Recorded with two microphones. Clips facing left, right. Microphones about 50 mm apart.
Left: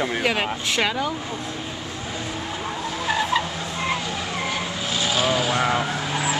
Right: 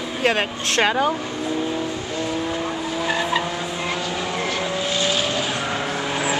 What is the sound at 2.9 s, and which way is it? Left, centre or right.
Vehicle, centre.